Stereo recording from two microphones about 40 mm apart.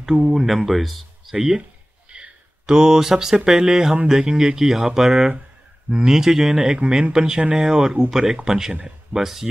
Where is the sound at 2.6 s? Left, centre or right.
Centre.